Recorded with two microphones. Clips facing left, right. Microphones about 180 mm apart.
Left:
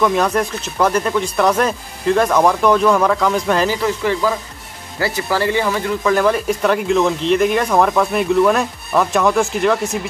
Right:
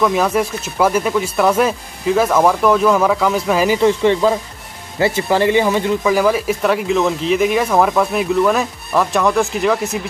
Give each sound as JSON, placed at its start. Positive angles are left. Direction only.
{"t": 0.0, "sound": "speech", "side_deg": -5}
{"t": 3.7, "sound": "speech", "side_deg": -25}
{"t": 6.0, "sound": "speech", "side_deg": -5}